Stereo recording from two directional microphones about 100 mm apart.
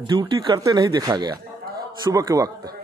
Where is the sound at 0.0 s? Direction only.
45° right (ahead or behind).